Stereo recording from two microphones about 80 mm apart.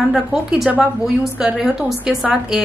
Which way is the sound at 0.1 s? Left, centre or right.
Centre.